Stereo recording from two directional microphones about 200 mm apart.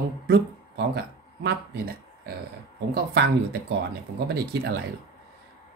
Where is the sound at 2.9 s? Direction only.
55° right (ahead or behind).